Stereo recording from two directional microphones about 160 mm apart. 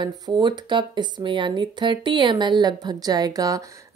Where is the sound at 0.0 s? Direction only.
30° right (ahead or behind).